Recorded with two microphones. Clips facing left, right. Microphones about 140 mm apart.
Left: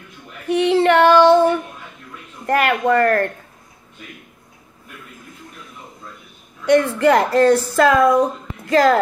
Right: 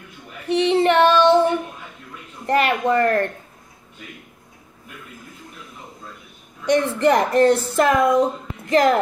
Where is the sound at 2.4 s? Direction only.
60° left (ahead or behind).